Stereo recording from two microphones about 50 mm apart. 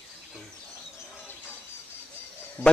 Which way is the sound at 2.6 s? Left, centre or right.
Left.